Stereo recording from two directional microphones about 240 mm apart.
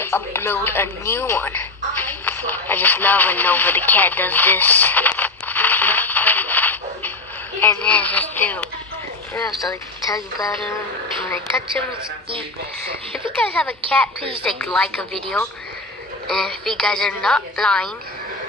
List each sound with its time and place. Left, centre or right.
0.0 s telephone: centre
7.6 s speech: centre
9.7 s speech: centre
13.6 s a woman's voice: centre
14.2 s a woman's voice: right
14.6 s a woman's voice: centre